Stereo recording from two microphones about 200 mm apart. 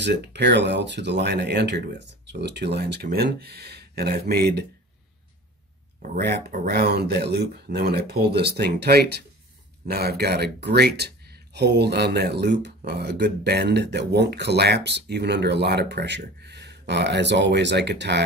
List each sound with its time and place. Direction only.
0.0 s speech: 60° right (ahead or behind)
6.0 s speech: 45° right (ahead or behind)